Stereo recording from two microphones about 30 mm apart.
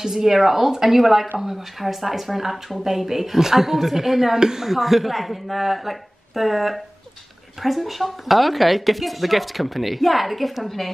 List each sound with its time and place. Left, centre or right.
0.0 s a woman's voice: centre
4.6 s speech: centre